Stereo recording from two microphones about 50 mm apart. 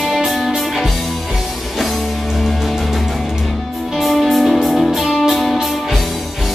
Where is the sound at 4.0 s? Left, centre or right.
Centre.